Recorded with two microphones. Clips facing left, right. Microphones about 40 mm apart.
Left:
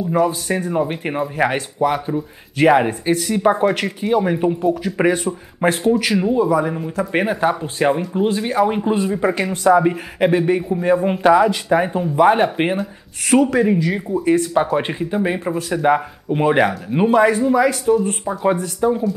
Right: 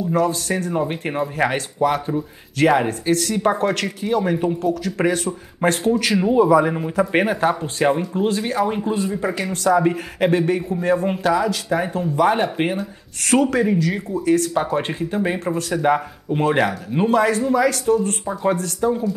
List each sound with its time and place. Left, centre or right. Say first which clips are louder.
0.1 s a man's voice: left 2 dB; centre
6.2 s a man's voice: right 2 dB; centre
11.2 s speech: left 8 dB; left; by 19.1 s centre